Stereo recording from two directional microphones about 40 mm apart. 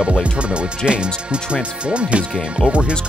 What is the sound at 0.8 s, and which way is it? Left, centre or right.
Speech, right.